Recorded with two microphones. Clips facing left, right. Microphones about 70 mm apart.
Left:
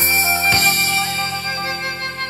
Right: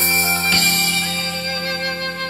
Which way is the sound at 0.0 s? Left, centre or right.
Left.